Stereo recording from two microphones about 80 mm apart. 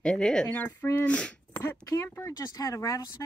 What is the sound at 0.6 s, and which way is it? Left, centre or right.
Speech, left.